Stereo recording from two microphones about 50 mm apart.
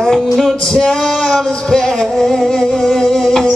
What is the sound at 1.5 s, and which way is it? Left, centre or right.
Music, centre.